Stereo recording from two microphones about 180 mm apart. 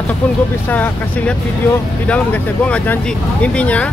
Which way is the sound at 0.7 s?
10° left (ahead or behind).